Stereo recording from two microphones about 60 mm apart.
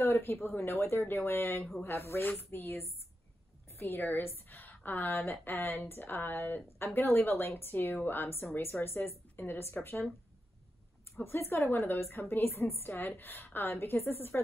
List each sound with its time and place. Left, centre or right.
0.0 s a woman's voice: left
11.1 s a woman's voice: left